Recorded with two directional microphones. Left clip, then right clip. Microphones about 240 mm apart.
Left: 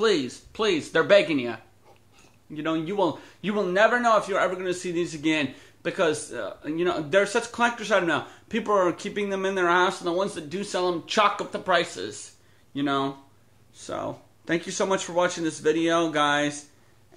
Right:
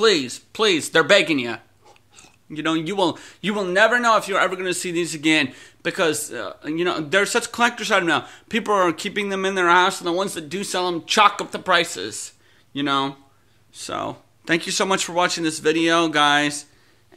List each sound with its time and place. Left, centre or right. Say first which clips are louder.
0.0 s a man's voice: right 5 dB; right